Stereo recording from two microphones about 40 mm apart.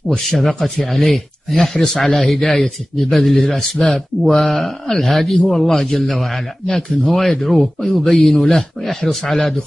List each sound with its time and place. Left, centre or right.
0.9 s speech: centre
6.7 s speech: centre